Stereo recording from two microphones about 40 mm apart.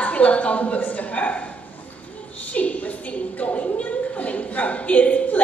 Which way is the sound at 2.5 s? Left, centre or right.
Left.